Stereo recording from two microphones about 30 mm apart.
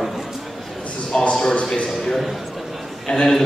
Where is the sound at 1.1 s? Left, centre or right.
Left.